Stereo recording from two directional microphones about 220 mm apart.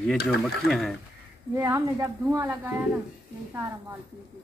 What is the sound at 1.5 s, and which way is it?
A woman's voice, 15° right (ahead or behind).